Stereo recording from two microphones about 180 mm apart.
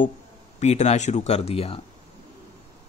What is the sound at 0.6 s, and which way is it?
Speech, 40° left (ahead or behind).